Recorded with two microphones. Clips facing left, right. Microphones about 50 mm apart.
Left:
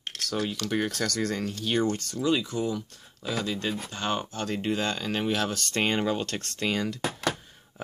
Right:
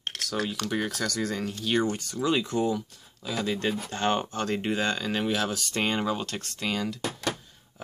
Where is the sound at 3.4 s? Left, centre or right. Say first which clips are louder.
Right 6 dB; right.